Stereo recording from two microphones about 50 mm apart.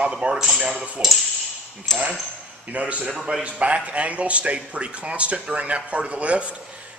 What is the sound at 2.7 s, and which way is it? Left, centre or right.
Speech, right.